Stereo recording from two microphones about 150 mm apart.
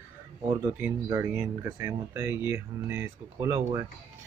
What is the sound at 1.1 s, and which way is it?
Speech, 15° right (ahead or behind).